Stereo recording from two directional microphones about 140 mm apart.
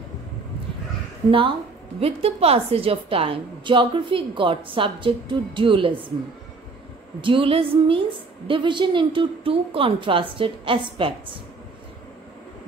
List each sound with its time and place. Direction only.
2.0 s a woman's voice: 45° right (ahead or behind)
7.2 s a woman's voice: 35° right (ahead or behind)